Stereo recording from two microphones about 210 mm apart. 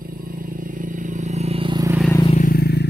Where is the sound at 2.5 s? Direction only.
50° left (ahead or behind).